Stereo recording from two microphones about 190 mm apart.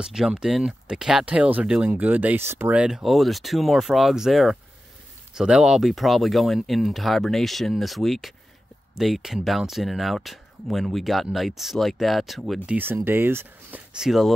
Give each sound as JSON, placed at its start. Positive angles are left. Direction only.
{"t": 0.0, "sound": "speech", "side_deg": -5}
{"t": 12.6, "sound": "speech", "side_deg": -10}